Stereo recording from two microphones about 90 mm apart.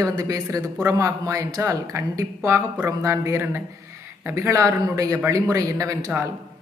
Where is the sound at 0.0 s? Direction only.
40° right (ahead or behind).